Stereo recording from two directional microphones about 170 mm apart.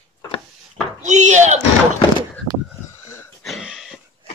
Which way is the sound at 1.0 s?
45° right (ahead or behind).